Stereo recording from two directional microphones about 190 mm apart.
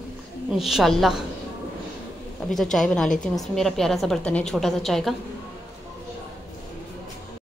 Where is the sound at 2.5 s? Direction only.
Centre (ahead or behind).